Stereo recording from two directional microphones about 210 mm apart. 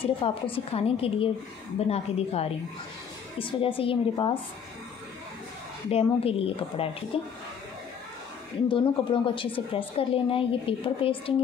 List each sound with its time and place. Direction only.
0.0 s a woman's voice: 25° left (ahead or behind)
5.9 s a woman's voice: 30° left (ahead or behind)
8.6 s a woman's voice: 25° left (ahead or behind)